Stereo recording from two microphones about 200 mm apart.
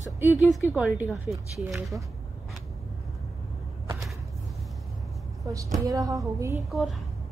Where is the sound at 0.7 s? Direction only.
10° right (ahead or behind).